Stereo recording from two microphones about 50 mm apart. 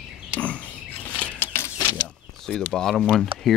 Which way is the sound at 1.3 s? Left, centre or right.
Left.